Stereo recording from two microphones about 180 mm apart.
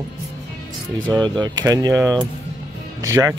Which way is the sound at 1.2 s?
20° right (ahead or behind).